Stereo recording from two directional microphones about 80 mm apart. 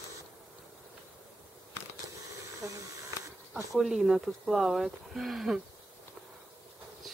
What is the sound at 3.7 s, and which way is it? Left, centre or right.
Speech, centre.